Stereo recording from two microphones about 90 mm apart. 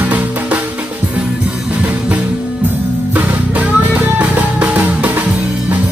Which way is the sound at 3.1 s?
15° right (ahead or behind).